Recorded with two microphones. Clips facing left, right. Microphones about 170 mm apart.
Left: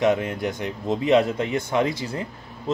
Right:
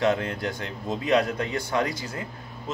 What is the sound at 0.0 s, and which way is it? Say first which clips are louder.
Speech: left 3 dB; 20° left (ahead or behind).